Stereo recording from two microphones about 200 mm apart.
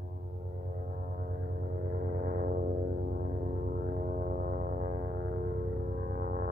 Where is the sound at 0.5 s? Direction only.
45° right (ahead or behind).